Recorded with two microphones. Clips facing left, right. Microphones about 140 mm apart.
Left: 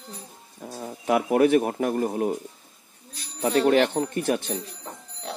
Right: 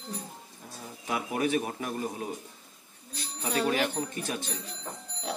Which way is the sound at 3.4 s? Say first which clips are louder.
Left 8 dB; 55° left (ahead or behind).